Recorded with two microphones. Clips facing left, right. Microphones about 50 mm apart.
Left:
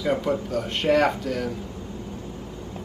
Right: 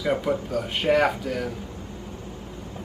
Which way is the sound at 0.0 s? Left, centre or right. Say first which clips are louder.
Even; centre.